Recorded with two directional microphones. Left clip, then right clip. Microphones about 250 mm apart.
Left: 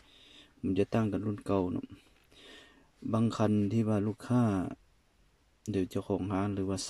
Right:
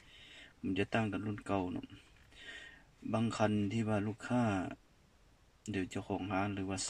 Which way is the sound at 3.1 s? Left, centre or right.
Centre.